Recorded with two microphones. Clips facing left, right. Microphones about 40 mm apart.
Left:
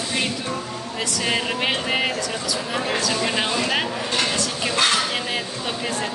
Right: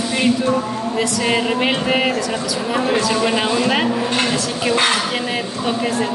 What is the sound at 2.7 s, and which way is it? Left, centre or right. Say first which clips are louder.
A woman's voice: right 7 dB; centre.